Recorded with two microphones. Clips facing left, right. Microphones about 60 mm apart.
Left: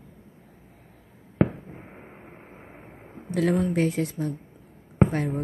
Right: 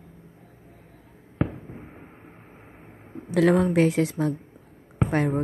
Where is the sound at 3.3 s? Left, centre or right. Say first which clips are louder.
Right 4 dB; right.